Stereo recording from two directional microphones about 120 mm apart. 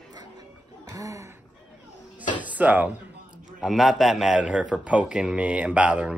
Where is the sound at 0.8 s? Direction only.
25° right (ahead or behind).